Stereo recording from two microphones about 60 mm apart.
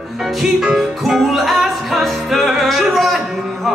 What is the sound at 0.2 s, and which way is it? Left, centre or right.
Music, centre.